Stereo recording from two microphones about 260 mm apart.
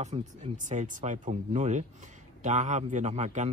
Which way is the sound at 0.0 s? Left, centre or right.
Right.